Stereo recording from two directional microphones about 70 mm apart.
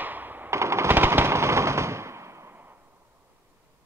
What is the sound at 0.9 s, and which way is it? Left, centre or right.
Machine gun, right.